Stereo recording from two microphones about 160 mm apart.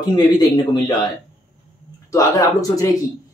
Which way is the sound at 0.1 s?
25° left (ahead or behind).